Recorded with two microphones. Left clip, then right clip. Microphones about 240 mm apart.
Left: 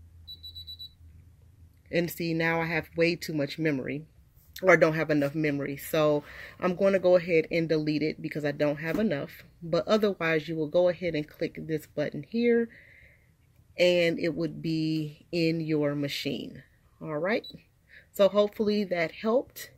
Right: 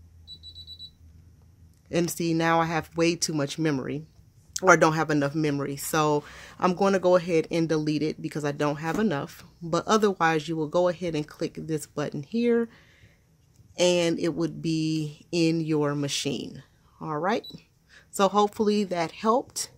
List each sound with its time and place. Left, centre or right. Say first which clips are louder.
1.9 s speech: right 2 dB; centre